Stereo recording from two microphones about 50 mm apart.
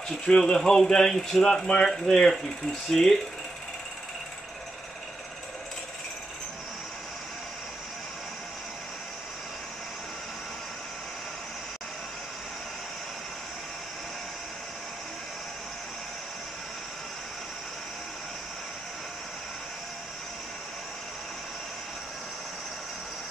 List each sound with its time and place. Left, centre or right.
0.3 s speech: centre